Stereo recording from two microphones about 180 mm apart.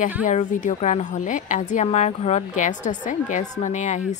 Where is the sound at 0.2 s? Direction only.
45° left (ahead or behind).